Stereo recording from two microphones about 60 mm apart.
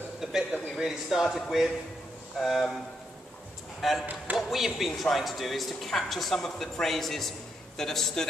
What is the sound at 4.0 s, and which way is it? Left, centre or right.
Speech, right.